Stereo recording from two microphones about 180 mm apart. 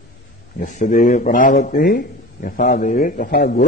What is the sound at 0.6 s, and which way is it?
Speech, 45° left (ahead or behind).